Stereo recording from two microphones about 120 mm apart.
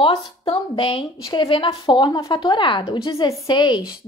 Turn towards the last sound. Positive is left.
turn(degrees=35)  # may be behind; listen again after turning